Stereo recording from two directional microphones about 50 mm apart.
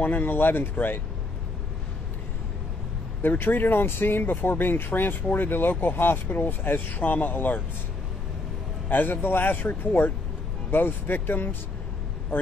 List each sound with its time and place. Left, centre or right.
0.0 s speech: left
3.2 s a man's voice: left
8.8 s a man's voice: left